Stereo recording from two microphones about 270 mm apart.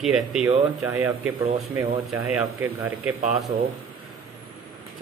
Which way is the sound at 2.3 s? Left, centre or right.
Centre.